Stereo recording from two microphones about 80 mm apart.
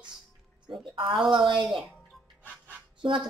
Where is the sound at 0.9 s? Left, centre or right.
Right.